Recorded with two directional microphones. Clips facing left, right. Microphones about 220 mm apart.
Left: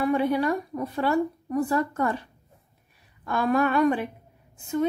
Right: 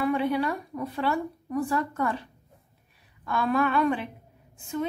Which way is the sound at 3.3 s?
45° left (ahead or behind).